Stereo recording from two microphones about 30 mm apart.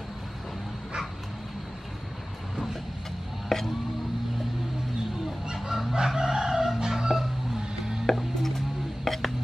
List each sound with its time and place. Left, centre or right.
3.4 s a sound: centre
5.7 s chicken: centre
8.2 s music: centre